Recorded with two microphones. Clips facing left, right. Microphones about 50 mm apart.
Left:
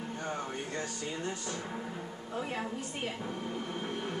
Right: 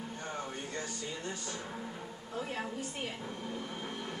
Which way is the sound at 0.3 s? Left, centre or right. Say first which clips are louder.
Left 2 dB; left.